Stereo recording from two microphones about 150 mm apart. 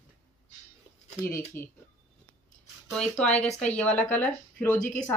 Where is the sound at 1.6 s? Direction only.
15° left (ahead or behind).